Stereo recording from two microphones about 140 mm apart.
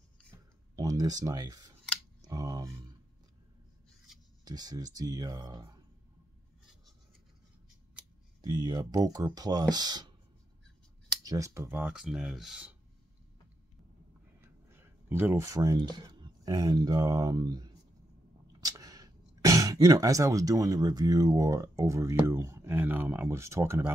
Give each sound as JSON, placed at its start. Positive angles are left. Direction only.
{"t": 0.7, "sound": "speech", "side_deg": -25}
{"t": 4.5, "sound": "speech", "side_deg": -30}
{"t": 8.4, "sound": "speech", "side_deg": -30}
{"t": 11.2, "sound": "speech", "side_deg": -25}
{"t": 14.4, "sound": "speech", "side_deg": -15}